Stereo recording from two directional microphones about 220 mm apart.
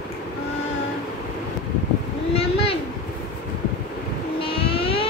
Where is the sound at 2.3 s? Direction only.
25° left (ahead or behind).